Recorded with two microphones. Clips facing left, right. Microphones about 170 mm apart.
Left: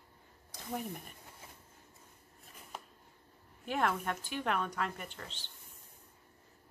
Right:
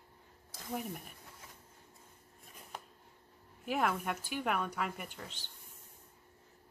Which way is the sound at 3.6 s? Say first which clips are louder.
Even; 5° right (ahead or behind).